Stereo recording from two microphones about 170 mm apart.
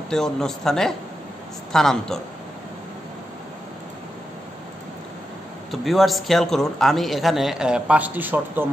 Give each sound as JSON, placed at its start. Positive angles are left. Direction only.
{"t": 0.1, "sound": "a man's voice", "side_deg": 5}
{"t": 5.7, "sound": "a man's voice", "side_deg": 0}